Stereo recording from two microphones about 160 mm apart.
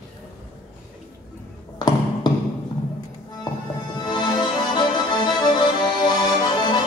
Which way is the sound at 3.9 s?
25° left (ahead or behind).